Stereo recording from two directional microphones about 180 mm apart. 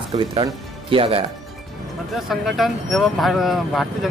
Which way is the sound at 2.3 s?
Centre (ahead or behind).